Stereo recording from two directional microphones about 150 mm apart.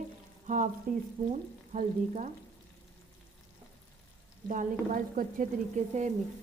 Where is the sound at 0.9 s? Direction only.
65° right (ahead or behind).